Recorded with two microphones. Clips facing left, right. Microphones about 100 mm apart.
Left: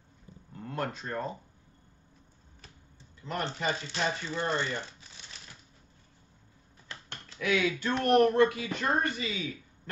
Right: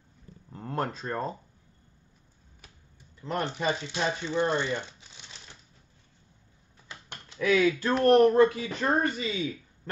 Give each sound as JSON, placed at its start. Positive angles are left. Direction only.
{"t": 0.5, "sound": "speech", "side_deg": -35}
{"t": 3.2, "sound": "speech", "side_deg": -35}
{"t": 3.5, "sound": "speech", "side_deg": -20}
{"t": 6.9, "sound": "a sound", "side_deg": -15}
{"t": 7.3, "sound": "speech", "side_deg": -40}